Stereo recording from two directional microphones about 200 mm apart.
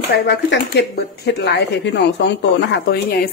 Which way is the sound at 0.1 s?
55° left (ahead or behind).